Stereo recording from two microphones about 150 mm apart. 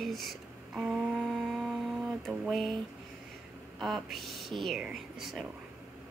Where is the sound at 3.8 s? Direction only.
Centre (ahead or behind).